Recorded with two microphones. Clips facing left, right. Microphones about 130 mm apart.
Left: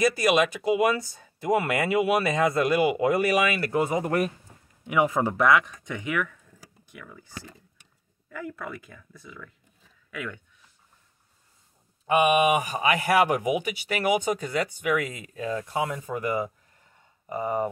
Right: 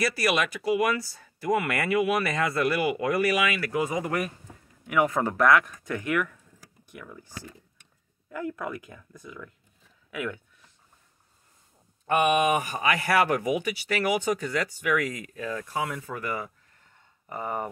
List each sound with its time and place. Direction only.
0.0 s speech: 20° left (ahead or behind)
4.8 s speech: 15° left (ahead or behind)
5.1 s speech: 5° left (ahead or behind)
8.3 s speech: 5° right (ahead or behind)
12.1 s speech: 10° left (ahead or behind)